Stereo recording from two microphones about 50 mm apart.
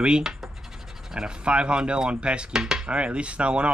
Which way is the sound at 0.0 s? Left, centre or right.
Centre.